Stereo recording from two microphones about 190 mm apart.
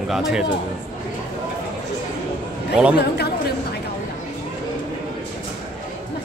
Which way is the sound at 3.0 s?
55° left (ahead or behind).